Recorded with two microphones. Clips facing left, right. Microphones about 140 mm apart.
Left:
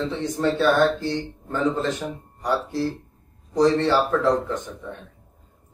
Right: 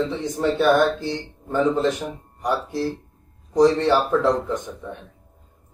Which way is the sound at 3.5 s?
15° right (ahead or behind).